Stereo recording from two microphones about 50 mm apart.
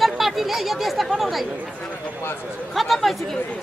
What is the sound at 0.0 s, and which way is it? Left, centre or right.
Speech, centre.